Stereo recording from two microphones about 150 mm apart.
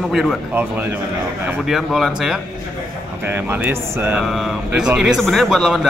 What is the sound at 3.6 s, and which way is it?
A man's voice, 15° right (ahead or behind).